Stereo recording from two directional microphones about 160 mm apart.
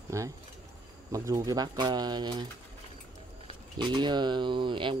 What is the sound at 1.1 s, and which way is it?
Speech, 20° right (ahead or behind).